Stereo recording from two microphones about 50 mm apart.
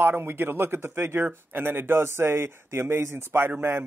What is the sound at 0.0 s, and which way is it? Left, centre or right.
Speech, right.